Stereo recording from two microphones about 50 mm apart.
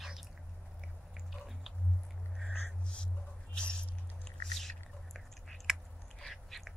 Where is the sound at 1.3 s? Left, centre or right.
Centre.